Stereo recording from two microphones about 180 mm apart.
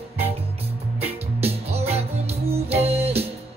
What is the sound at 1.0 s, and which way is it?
Music, 35° right (ahead or behind).